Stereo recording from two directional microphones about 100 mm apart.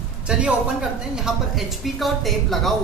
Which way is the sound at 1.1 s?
5° right (ahead or behind).